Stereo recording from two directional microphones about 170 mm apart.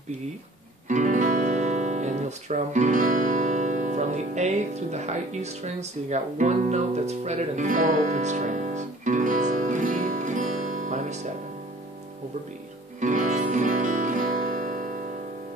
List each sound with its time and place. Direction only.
0.8 s guitar: 50° right (ahead or behind)
13.0 s music: 50° right (ahead or behind)